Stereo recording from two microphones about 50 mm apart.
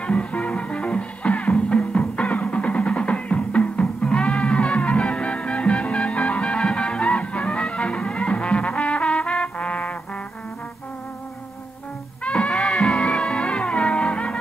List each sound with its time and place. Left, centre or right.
0.0 s music: left
12.3 s music: left